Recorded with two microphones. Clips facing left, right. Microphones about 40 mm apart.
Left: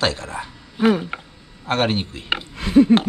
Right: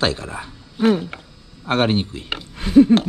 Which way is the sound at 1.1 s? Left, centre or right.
Centre.